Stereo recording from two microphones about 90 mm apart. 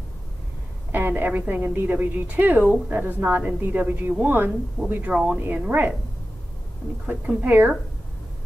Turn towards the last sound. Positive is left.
turn(degrees=-20)  # may be behind; listen again after turning